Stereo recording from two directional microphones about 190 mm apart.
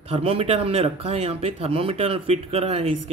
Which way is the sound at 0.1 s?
30° right (ahead or behind).